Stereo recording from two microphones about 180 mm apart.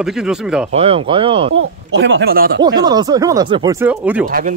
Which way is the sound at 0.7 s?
35° right (ahead or behind).